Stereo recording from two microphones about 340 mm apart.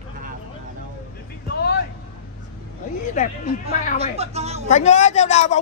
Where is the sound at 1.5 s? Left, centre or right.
Left.